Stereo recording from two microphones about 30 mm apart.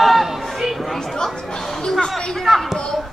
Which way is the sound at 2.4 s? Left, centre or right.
Centre.